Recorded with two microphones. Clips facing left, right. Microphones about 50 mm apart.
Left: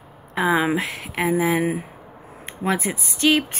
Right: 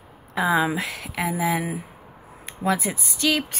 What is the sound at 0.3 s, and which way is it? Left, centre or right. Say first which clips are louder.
Speech: left 2 dB; left.